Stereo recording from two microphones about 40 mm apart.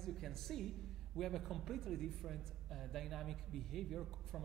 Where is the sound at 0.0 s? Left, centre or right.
Centre.